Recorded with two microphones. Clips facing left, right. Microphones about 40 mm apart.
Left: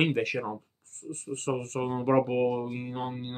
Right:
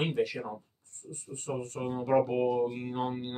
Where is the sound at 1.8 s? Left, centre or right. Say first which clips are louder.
Left 1 dB; left; by 3.4 s centre.